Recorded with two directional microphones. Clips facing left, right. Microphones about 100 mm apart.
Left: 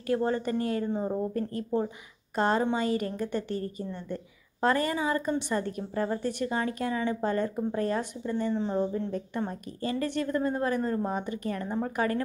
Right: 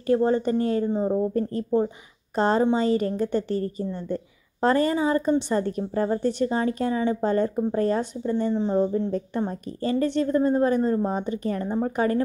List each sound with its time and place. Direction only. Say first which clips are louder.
0.0 s a woman's voice: right 6 dB; 30° right (ahead or behind)
8.5 s a woman's voice: right 6 dB; 20° right (ahead or behind)
8.9 s a woman's voice: right 6 dB; 40° right (ahead or behind)